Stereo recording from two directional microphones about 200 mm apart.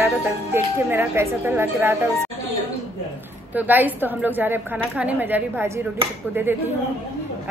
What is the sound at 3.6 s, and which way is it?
A woman's voice, 10° right (ahead or behind).